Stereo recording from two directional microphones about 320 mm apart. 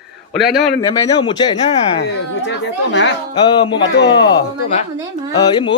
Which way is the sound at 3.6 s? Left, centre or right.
Centre.